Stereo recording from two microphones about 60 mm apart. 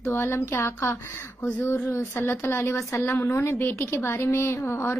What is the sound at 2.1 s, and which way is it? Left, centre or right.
A woman's voice, left.